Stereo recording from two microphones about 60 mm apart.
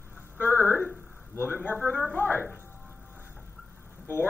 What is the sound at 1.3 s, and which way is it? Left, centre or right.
Speech, left.